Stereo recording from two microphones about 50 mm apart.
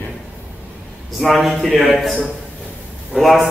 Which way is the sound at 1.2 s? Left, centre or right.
Centre.